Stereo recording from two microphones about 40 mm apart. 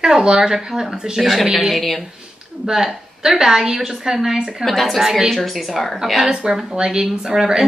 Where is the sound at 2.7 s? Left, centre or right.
Centre.